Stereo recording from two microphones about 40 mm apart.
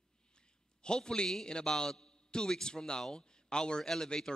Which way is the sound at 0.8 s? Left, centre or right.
Centre.